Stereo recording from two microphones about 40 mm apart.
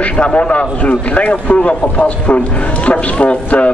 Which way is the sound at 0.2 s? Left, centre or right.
Left.